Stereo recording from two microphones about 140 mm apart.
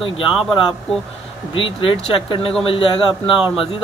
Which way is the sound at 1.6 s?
40° left (ahead or behind).